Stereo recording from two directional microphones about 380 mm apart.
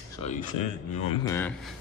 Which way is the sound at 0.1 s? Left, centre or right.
Centre.